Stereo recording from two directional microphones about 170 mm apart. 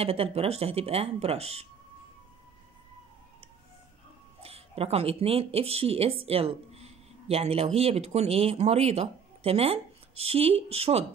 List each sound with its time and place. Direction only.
0.0 s speech: 35° right (ahead or behind)
4.4 s speech: 35° right (ahead or behind)